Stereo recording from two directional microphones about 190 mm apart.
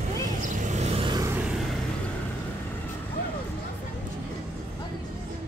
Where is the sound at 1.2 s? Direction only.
10° right (ahead or behind).